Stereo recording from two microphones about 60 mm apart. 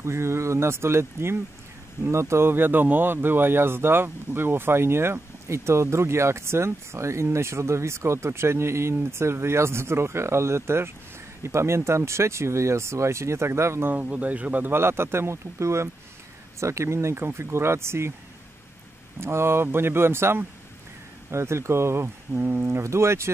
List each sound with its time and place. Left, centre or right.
0.0 s speech: right
14.0 s speech: right
19.1 s speech: right
22.4 s speech: right